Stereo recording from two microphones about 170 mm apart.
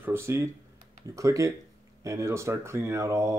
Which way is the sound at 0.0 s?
15° right (ahead or behind).